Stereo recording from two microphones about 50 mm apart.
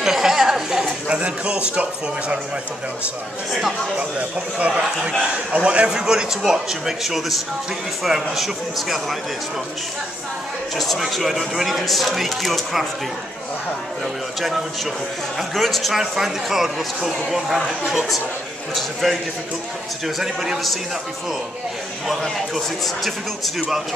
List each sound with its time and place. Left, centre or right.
0.0 s a sound: centre
1.0 s a man's voice: right
4.2 s a man's voice: right
5.9 s a man's voice: centre
11.0 s speech: centre
15.3 s speech: centre
20.2 s speech: centre
22.0 s speech: centre